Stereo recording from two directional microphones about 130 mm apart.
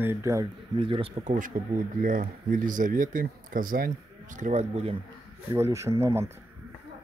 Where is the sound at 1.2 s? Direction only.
80° right; by 4.9 s 55° right (ahead or behind).